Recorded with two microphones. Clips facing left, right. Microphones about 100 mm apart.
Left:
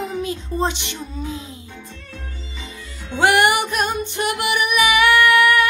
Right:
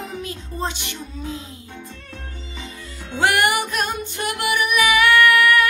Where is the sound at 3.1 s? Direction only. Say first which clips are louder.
Left 3 dB; 20° left (ahead or behind).